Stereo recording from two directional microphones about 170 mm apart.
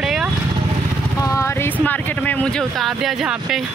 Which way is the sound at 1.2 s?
20° left (ahead or behind).